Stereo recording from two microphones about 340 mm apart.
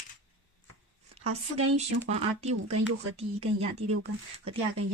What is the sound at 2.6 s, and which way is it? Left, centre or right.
Speech, right.